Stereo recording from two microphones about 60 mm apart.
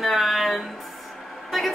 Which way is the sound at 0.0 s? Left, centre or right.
Centre.